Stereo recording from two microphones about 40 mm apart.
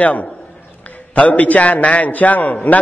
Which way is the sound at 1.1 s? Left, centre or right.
Left.